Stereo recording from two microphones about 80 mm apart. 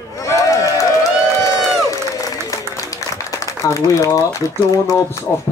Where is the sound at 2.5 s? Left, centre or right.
Left.